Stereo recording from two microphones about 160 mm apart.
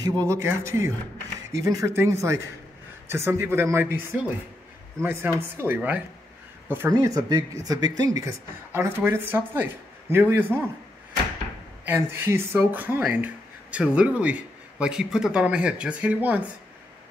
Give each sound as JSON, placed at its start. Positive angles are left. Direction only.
{"t": 0.2, "sound": "speech", "side_deg": -20}
{"t": 11.8, "sound": "speech", "side_deg": -15}